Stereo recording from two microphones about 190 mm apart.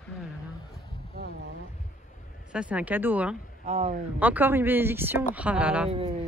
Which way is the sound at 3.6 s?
35° right (ahead or behind).